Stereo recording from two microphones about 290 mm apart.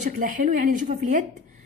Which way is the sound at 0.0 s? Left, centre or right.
Right.